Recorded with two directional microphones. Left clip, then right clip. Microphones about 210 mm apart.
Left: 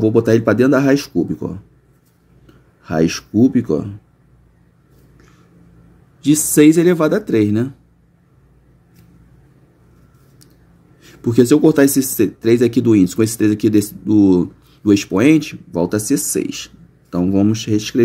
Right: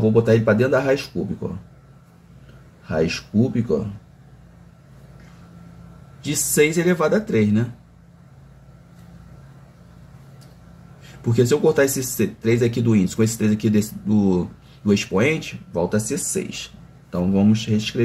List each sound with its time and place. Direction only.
0.0 s speech: 55° left (ahead or behind)
2.8 s speech: 55° left (ahead or behind)
6.2 s speech: 50° left (ahead or behind)
11.0 s speech: 55° left (ahead or behind)